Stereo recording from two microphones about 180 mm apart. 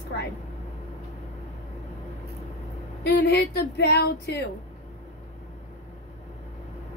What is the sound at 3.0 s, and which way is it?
Speech, 65° left (ahead or behind).